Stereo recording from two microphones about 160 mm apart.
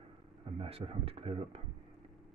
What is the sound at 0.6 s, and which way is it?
Speech, 35° right (ahead or behind).